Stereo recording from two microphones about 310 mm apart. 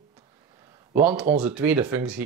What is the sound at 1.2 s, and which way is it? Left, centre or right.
Speech, right.